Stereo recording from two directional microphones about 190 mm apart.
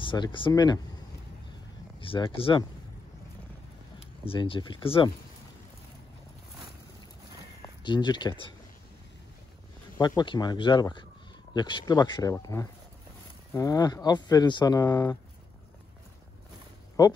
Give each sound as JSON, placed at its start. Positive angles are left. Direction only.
{"t": 0.0, "sound": "speech", "side_deg": 25}
{"t": 2.0, "sound": "speech", "side_deg": 25}
{"t": 4.3, "sound": "speech", "side_deg": 25}
{"t": 7.8, "sound": "speech", "side_deg": 25}
{"t": 9.9, "sound": "speech", "side_deg": 20}
{"t": 17.0, "sound": "speech", "side_deg": 20}